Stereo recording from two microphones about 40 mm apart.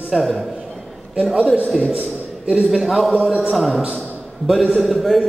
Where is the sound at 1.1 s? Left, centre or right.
Centre.